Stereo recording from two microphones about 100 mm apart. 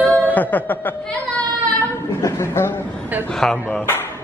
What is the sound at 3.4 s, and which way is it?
Speech, 5° left (ahead or behind).